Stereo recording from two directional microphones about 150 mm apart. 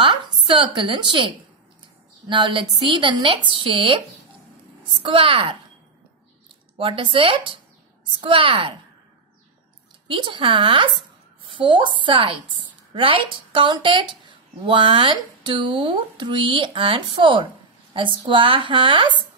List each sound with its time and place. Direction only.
0.0 s a woman's voice: 35° right (ahead or behind)
5.0 s speech: 40° right (ahead or behind)
6.8 s speech: 35° right (ahead or behind)
10.0 s speech: 35° right (ahead or behind)